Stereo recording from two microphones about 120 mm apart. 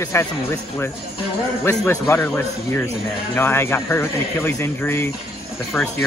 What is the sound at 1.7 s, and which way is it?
A man's voice, 20° left (ahead or behind).